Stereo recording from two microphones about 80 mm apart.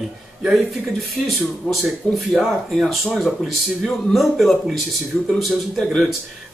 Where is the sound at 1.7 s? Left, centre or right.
Centre.